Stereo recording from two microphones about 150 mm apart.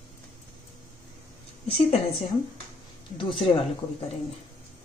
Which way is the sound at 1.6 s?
40° left (ahead or behind).